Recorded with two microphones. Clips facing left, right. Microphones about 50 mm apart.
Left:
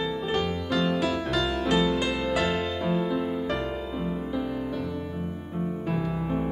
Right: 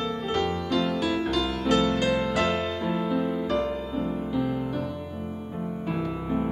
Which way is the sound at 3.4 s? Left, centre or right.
Left.